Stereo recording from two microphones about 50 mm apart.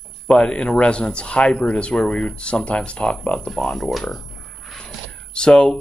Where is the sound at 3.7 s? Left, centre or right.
Centre.